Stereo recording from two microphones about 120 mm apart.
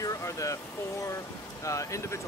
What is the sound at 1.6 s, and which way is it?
Speech, 25° left (ahead or behind).